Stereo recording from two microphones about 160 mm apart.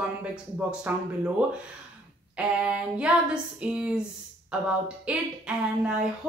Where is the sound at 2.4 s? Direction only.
10° right (ahead or behind).